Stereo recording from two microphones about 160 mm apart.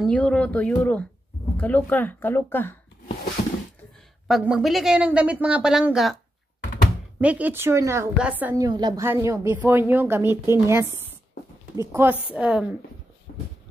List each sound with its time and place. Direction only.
0.0 s speech: 5° left (ahead or behind)
4.3 s speech: 5° right (ahead or behind)
7.2 s speech: 10° right (ahead or behind)
8.5 s a woman's voice: 25° right (ahead or behind)
9.0 s speech: 15° right (ahead or behind)
12.4 s speech: 5° right (ahead or behind)